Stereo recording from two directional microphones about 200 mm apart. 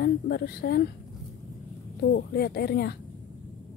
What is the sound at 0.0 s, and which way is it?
Speech, 55° left (ahead or behind).